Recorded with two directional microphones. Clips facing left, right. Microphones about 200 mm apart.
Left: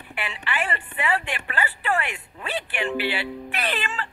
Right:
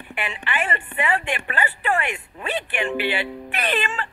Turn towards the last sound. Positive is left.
turn(degrees=-20)  # may be behind; listen again after turning